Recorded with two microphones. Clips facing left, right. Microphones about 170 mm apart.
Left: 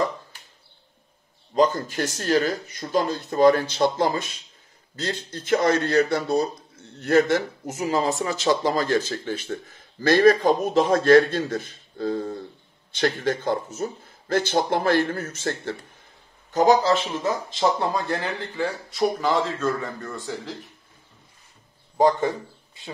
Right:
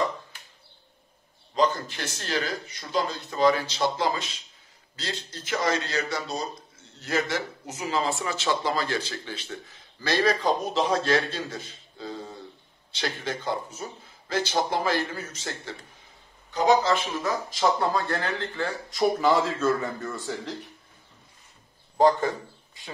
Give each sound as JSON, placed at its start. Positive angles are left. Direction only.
{"t": 1.5, "sound": "a man's voice", "side_deg": 45}
{"t": 16.5, "sound": "a man's voice", "side_deg": 40}
{"t": 17.1, "sound": "speech", "side_deg": 20}
{"t": 18.9, "sound": "speech", "side_deg": 0}
{"t": 21.9, "sound": "a man's voice", "side_deg": 20}